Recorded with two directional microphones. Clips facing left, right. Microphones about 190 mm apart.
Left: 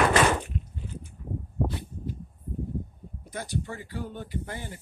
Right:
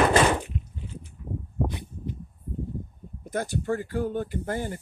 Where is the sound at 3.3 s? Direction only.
50° right (ahead or behind).